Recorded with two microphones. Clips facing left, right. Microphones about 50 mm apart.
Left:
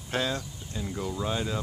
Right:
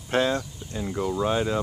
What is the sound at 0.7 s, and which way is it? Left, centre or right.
Speech, centre.